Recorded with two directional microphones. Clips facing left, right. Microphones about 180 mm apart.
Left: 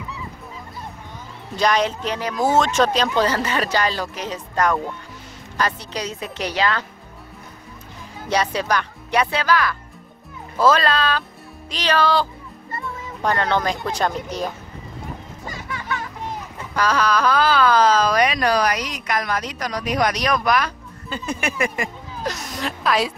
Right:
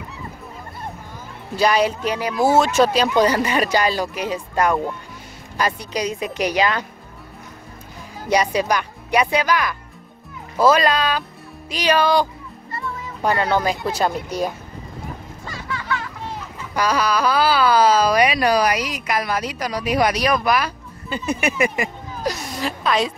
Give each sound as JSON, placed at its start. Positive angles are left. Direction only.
{"t": 1.6, "sound": "speech", "side_deg": -10}
{"t": 8.3, "sound": "speech", "side_deg": -10}
{"t": 15.4, "sound": "music", "side_deg": 20}
{"t": 16.7, "sound": "speech", "side_deg": -10}